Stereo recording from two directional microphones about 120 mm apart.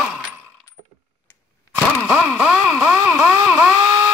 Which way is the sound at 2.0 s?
5° right (ahead or behind).